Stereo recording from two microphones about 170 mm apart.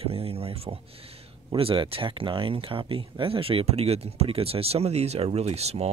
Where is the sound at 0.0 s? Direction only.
35° right (ahead or behind).